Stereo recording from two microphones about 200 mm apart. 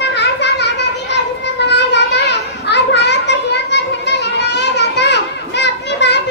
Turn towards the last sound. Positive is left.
turn(degrees=60)  # may be behind; listen again after turning